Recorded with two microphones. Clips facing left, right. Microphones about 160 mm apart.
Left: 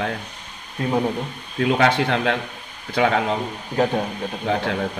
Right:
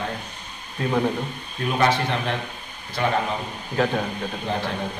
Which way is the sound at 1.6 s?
80° left.